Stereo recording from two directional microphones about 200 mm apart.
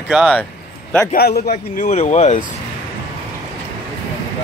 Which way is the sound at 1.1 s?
50° left (ahead or behind).